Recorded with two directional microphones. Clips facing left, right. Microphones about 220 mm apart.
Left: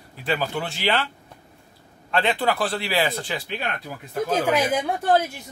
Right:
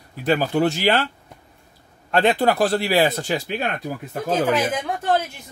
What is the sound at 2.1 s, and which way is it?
Speech, 45° right (ahead or behind).